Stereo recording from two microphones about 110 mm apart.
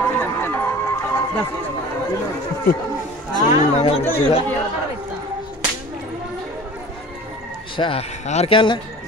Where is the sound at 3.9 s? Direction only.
65° left (ahead or behind).